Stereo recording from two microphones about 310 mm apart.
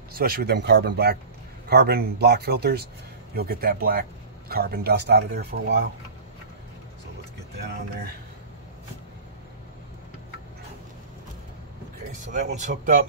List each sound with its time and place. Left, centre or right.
0.1 s speech: right
7.5 s speech: right
12.1 s speech: right